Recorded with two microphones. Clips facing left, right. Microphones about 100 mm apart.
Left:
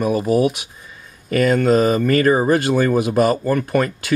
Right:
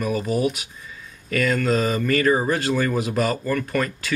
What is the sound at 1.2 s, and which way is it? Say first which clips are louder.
Speech: left 6 dB; 35° left (ahead or behind).